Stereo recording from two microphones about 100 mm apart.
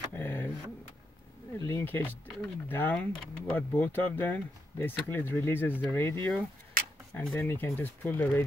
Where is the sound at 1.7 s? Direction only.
20° left (ahead or behind).